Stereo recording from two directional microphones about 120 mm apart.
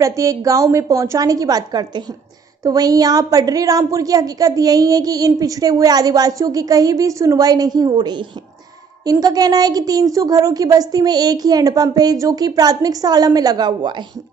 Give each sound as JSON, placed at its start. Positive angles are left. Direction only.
{"t": 0.0, "sound": "a woman's voice", "side_deg": -25}